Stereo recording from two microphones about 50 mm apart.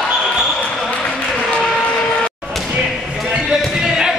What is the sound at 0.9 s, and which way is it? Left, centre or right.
Basketball bounce, left.